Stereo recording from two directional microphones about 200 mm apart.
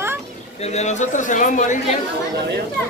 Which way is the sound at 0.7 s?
35° left (ahead or behind).